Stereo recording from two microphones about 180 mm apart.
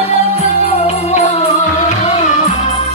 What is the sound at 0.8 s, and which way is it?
Music, 35° left (ahead or behind).